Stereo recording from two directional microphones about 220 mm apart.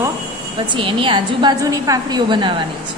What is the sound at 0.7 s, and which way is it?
A woman's voice, 25° right (ahead or behind).